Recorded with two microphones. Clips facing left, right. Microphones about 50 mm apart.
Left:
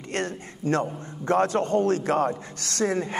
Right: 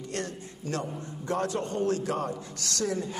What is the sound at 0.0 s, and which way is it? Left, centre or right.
A man's voice, left.